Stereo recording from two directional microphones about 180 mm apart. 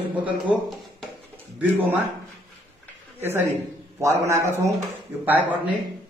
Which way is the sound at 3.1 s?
10° right (ahead or behind).